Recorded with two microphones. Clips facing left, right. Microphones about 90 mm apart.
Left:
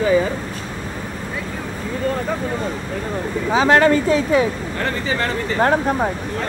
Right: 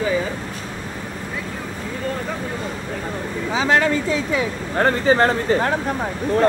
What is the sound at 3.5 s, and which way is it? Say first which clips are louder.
Speech: left 4 dB; 55° left (ahead or behind).